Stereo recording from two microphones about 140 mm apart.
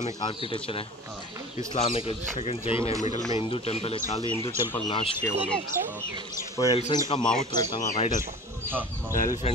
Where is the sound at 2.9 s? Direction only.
55° left (ahead or behind).